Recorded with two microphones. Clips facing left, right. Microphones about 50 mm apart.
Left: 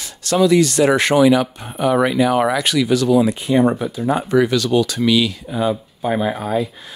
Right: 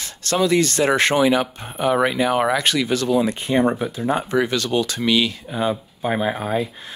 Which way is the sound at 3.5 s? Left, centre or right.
Right.